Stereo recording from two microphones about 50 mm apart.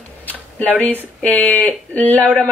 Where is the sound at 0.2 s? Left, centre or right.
Left.